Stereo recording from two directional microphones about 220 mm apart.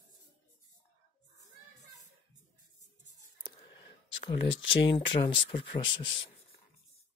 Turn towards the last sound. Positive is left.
turn(degrees=20)  # may be behind; listen again after turning